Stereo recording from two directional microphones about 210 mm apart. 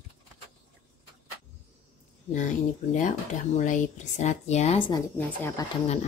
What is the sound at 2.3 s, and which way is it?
Speech, 35° left (ahead or behind).